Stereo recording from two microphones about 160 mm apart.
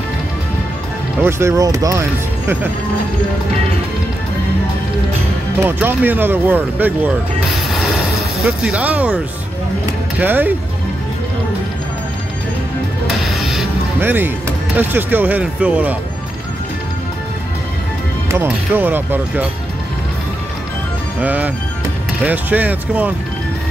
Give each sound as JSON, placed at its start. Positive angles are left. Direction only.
{"t": 1.2, "sound": "speech", "side_deg": -15}
{"t": 5.6, "sound": "speech", "side_deg": -15}
{"t": 10.2, "sound": "speech", "side_deg": -10}
{"t": 13.0, "sound": "music", "side_deg": 0}
{"t": 13.9, "sound": "speech", "side_deg": -15}
{"t": 18.3, "sound": "speech", "side_deg": -10}
{"t": 21.2, "sound": "speech", "side_deg": -10}